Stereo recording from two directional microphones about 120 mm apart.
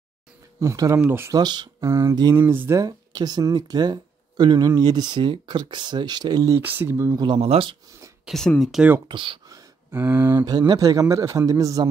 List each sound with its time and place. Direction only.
0.6 s a man's voice: 25° right (ahead or behind)
1.3 s speech: 35° right (ahead or behind)
1.8 s a man's voice: 25° right (ahead or behind)
2.4 s speech: 15° right (ahead or behind)
2.8 s speech: 35° right (ahead or behind)
6.6 s a man's voice: 15° right (ahead or behind)
7.2 s speech: 50° right (ahead or behind)
8.3 s speech: 5° left (ahead or behind)
9.0 s speech: 45° right (ahead or behind)
9.8 s a man's voice: 20° right (ahead or behind)